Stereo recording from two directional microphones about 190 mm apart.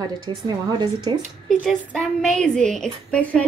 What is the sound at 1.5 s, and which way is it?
A woman's voice, centre (ahead or behind).